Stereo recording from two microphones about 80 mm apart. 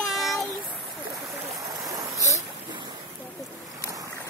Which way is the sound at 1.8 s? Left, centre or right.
Right.